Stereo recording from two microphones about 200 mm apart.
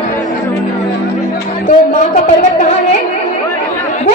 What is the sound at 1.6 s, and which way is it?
A woman's voice, 40° left (ahead or behind).